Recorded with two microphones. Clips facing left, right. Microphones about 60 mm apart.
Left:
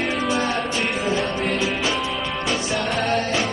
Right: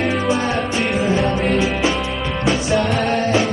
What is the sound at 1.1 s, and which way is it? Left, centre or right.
Music, right.